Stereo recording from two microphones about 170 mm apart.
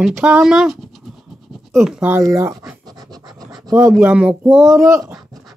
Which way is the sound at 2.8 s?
20° right (ahead or behind).